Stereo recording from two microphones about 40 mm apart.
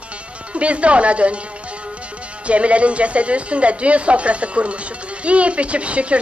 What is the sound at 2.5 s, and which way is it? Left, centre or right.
Speech, right.